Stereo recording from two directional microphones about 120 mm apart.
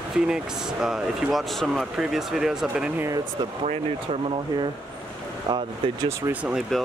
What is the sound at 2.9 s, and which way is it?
Speech, 25° right (ahead or behind).